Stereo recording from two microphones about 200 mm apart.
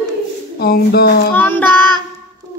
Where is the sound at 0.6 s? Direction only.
50° left (ahead or behind).